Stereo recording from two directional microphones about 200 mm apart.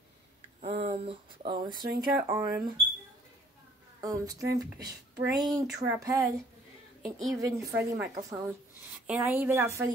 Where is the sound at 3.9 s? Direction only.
15° right (ahead or behind).